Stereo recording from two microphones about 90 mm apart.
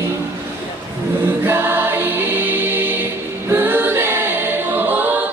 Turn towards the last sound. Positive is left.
turn(degrees=-20)  # may be behind; listen again after turning